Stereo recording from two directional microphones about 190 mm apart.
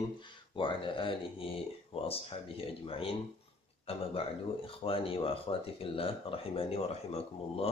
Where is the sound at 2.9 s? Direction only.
30° left (ahead or behind).